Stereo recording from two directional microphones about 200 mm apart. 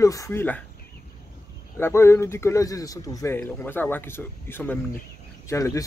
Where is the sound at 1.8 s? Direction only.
15° left (ahead or behind).